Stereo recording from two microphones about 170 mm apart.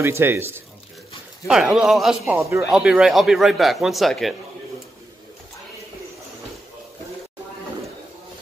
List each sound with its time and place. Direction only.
0.0 s speech: 15° right (ahead or behind)
1.5 s speech: 5° right (ahead or behind)
2.3 s speech: 15° right (ahead or behind)
2.7 s speech: 5° right (ahead or behind)